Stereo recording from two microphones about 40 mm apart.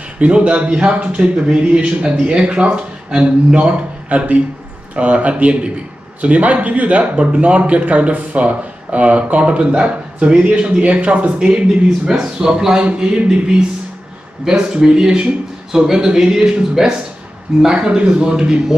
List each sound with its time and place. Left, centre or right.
0.2 s a man's voice: right
14.7 s a man's voice: centre